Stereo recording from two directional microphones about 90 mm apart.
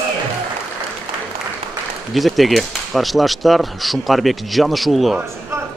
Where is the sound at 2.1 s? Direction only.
Centre (ahead or behind).